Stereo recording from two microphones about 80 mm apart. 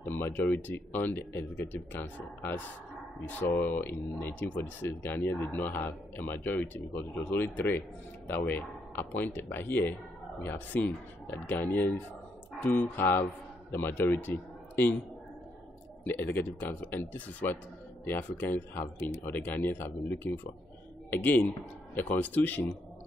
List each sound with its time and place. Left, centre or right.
0.0 s a man's voice: left
16.0 s speech: left